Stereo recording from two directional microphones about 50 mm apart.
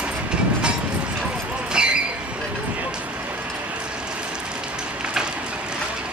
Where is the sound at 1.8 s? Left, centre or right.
Centre.